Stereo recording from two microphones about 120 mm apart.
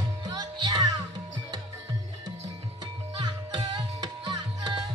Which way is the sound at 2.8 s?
40° right (ahead or behind).